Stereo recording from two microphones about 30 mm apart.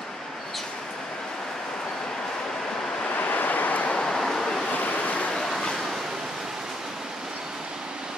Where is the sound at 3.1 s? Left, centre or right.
Left.